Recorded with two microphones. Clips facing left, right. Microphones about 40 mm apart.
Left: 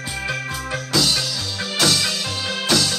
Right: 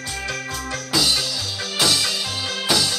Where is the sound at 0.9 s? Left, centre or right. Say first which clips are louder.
Even; centre.